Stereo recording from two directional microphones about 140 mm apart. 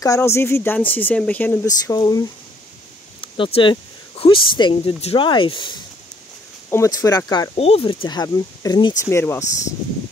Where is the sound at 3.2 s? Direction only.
40° left (ahead or behind).